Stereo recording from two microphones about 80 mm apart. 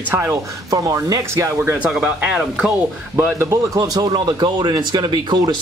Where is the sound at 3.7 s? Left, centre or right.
Right.